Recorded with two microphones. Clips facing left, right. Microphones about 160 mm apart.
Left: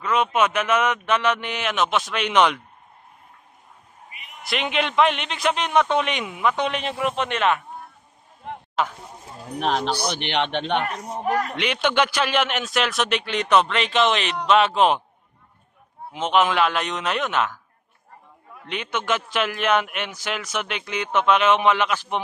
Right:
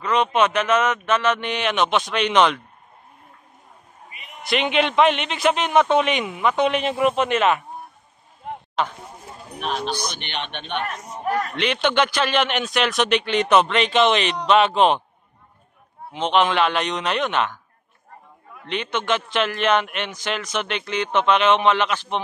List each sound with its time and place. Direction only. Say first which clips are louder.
0.0 s a man's voice: right 2 dB; 5° left (ahead or behind)
4.5 s a man's voice: right 4 dB; centre (ahead or behind)
8.8 s speech: even; 5° left (ahead or behind)
10.2 s a man's voice: left 8 dB; 90° left
11.2 s a man's voice: right 1 dB; 15° left (ahead or behind)
16.1 s a man's voice: right 1 dB; 5° left (ahead or behind)
18.7 s a man's voice: right 2 dB; 10° left (ahead or behind)